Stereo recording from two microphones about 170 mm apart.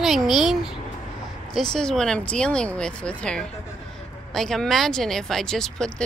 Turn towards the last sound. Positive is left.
turn(degrees=5)  # may be behind; listen again after turning